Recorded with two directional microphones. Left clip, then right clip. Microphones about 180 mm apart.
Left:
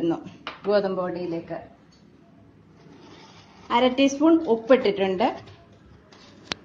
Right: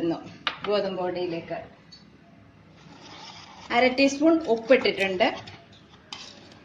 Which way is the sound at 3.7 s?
35° left (ahead or behind).